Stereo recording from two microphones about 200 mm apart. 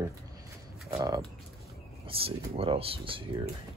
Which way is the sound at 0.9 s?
20° right (ahead or behind).